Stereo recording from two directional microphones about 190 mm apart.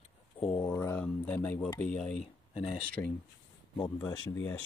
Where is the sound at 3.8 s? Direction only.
20° left (ahead or behind).